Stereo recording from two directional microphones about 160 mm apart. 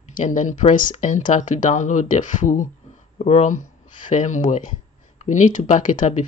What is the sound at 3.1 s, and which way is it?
Speech, 45° left (ahead or behind).